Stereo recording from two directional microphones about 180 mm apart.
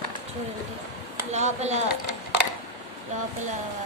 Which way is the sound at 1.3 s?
40° right (ahead or behind).